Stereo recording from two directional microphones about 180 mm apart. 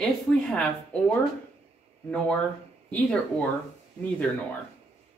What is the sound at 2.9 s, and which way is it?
Speech, 5° left (ahead or behind).